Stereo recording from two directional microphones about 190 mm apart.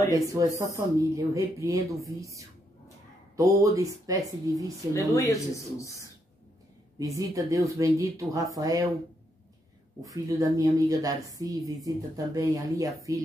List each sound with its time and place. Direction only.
0.1 s speech: 15° right (ahead or behind)
5.1 s speech: 15° left (ahead or behind)
7.0 s speech: 20° right (ahead or behind)
10.0 s a woman's voice: 15° right (ahead or behind)